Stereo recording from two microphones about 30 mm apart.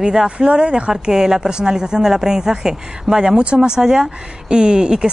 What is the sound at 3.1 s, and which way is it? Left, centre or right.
Speech, centre.